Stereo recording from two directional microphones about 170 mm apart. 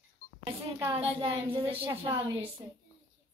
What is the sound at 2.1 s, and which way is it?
Child singing, 30° right (ahead or behind).